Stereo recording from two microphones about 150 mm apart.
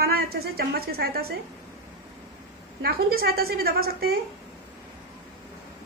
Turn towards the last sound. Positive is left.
turn(degrees=-90)